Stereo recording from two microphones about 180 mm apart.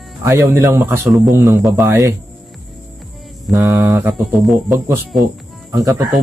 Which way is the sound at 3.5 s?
20° right (ahead or behind).